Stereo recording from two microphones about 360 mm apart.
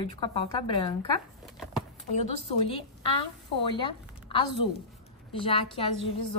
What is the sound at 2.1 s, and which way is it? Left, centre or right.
A woman's voice, centre.